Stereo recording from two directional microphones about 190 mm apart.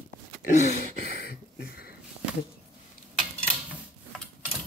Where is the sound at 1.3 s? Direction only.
55° left (ahead or behind).